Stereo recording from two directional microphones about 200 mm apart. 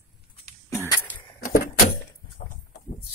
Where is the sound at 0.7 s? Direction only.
15° left (ahead or behind).